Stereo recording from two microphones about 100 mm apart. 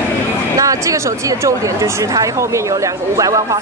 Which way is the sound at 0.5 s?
35° right (ahead or behind).